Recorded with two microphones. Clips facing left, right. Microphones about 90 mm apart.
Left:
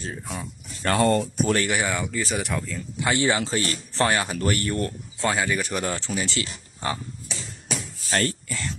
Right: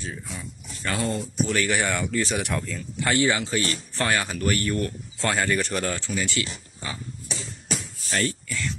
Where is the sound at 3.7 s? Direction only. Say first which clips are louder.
Left 2 dB; 30° left (ahead or behind).